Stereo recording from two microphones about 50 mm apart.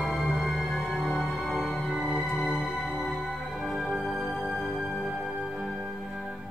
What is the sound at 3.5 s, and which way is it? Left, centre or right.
Music, centre.